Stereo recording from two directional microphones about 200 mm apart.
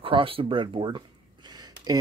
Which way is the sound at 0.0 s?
25° right (ahead or behind).